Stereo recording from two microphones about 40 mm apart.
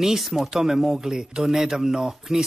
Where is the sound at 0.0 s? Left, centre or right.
Centre.